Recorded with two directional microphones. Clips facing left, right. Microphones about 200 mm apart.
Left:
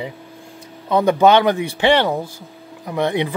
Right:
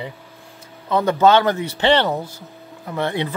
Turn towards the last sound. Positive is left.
turn(degrees=15)  # may be behind; listen again after turning